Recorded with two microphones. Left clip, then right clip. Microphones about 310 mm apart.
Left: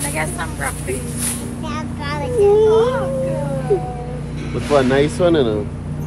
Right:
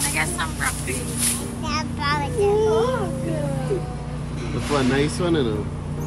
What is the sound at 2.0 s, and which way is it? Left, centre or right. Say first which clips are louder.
Child singing: left 6 dB; centre.